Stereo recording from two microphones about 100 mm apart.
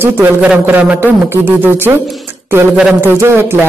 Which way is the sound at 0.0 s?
20° right (ahead or behind).